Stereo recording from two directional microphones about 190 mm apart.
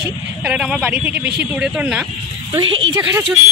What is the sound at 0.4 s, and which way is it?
Speech, 5° right (ahead or behind).